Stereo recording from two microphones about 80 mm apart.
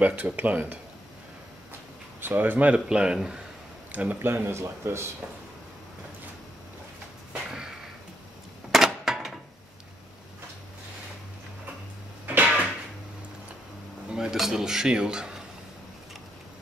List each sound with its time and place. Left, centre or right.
0.0 s speech: right
2.1 s speech: right
3.9 s speech: right
7.5 s a sound: centre
12.4 s a sound: centre
14.1 s dishes: centre